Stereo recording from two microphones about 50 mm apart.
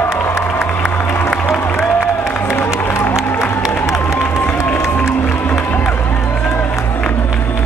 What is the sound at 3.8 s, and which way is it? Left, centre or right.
Music, left.